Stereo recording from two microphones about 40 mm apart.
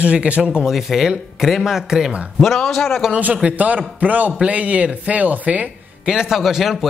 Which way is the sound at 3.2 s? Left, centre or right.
Right.